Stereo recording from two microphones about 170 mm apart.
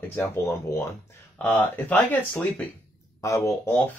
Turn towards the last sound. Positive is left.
turn(degrees=15)  # may be behind; listen again after turning